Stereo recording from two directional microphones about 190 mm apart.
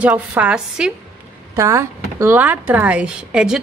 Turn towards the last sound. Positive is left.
turn(degrees=-5)  # may be behind; listen again after turning